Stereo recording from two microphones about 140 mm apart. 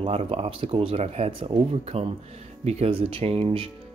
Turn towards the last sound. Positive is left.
turn(degrees=-40)  # may be behind; listen again after turning